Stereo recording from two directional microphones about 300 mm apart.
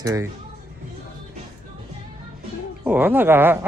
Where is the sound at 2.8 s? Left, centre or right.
Centre.